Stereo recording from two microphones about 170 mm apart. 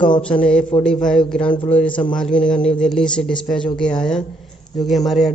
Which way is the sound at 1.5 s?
30° left (ahead or behind).